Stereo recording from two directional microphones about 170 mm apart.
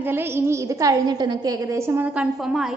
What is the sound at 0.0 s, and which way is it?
A woman's voice, 15° right (ahead or behind).